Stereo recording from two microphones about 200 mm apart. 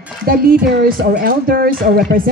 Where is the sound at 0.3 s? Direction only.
45° right (ahead or behind).